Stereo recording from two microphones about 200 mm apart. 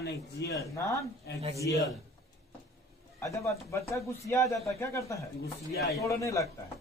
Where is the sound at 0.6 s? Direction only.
15° left (ahead or behind).